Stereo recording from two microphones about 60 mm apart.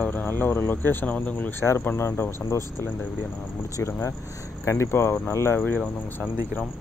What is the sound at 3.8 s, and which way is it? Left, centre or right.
Speech, left.